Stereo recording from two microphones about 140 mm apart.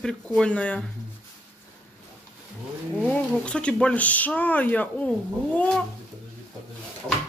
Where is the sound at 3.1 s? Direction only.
5° left (ahead or behind).